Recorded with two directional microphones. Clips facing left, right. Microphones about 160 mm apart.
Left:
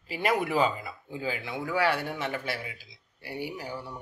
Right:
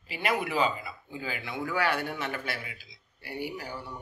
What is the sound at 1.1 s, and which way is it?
A man's voice, 30° left (ahead or behind).